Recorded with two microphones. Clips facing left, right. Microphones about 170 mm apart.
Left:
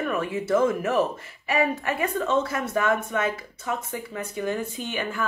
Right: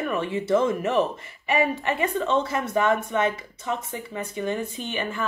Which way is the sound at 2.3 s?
5° left (ahead or behind).